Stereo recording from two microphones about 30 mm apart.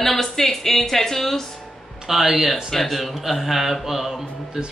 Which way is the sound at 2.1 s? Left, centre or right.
Centre.